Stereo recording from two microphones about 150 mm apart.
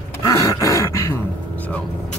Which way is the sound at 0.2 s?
20° left (ahead or behind).